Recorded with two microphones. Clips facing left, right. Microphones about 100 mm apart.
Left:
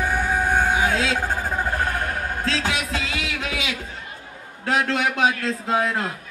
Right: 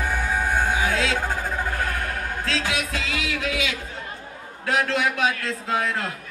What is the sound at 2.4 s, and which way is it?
Music, 25° left (ahead or behind).